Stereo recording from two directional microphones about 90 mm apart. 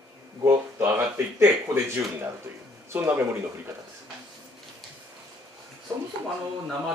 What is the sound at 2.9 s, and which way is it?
Speech, 25° right (ahead or behind).